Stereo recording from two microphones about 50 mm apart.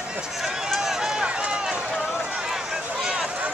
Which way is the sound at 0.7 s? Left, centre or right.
Centre.